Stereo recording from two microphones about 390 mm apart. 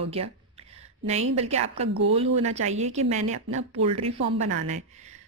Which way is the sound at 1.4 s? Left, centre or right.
Centre.